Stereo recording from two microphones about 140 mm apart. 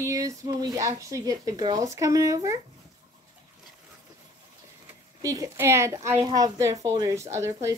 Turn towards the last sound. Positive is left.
turn(degrees=-20)  # may be behind; listen again after turning